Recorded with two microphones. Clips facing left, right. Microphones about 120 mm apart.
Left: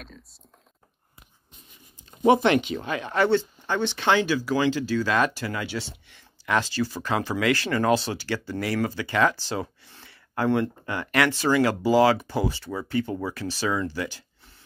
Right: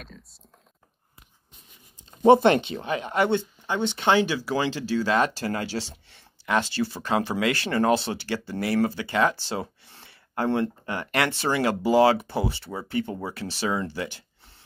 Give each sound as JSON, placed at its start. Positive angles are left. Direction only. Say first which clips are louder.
{"t": 0.0, "sound": "speech", "louder": "even", "side_deg": 0}
{"t": 2.2, "sound": "speech", "louder": "right 3 dB", "side_deg": -35}